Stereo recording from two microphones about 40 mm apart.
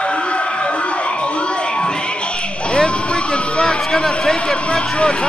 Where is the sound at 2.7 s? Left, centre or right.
Left.